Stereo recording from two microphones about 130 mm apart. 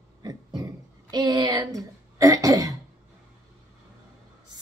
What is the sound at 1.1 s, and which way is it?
Speech, 30° right (ahead or behind).